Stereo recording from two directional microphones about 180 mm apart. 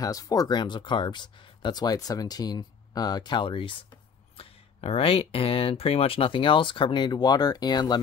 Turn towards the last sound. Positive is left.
turn(degrees=25)  # may be behind; listen again after turning